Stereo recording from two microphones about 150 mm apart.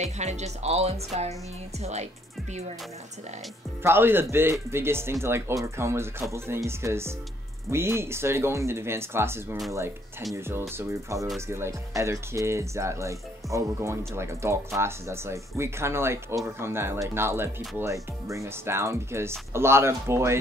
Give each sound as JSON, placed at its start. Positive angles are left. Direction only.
{"t": 0.0, "sound": "speech", "side_deg": -50}
{"t": 3.8, "sound": "speech", "side_deg": -15}
{"t": 10.8, "sound": "speech", "side_deg": -20}